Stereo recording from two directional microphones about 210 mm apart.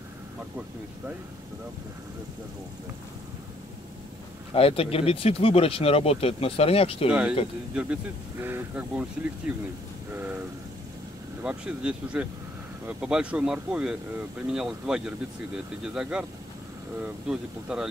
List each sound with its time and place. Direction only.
4.6 s speech: 25° left (ahead or behind)
7.1 s speech: 5° right (ahead or behind)
11.4 s speech: 5° right (ahead or behind)